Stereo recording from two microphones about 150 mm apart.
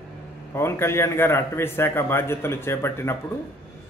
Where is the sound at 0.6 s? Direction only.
15° left (ahead or behind).